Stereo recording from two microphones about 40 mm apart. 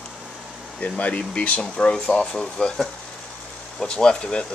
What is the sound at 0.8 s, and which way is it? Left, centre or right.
Speech, left.